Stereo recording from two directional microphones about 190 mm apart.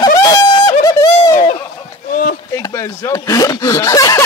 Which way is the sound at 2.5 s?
15° left (ahead or behind).